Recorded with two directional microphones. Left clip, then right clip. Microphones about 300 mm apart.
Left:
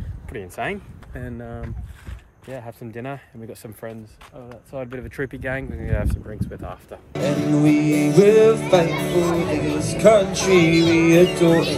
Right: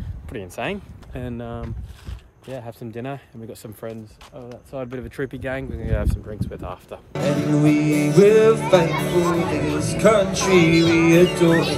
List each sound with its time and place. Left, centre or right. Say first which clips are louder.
0.3 s speech: even; centre